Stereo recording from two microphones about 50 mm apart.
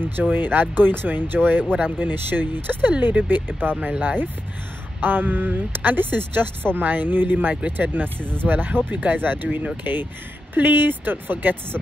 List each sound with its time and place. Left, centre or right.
0.0 s speech: right